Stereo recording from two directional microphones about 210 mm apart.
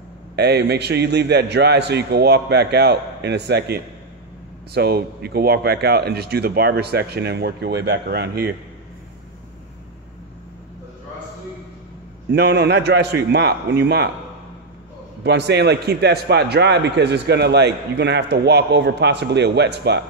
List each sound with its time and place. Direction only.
0.4 s a man's voice: 50° right (ahead or behind)
12.3 s a man's voice: 50° right (ahead or behind)
15.2 s a man's voice: 55° right (ahead or behind)